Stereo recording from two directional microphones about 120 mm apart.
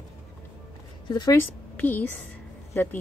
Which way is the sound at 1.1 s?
35° left (ahead or behind).